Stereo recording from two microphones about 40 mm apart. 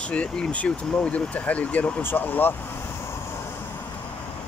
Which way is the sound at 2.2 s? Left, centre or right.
Left.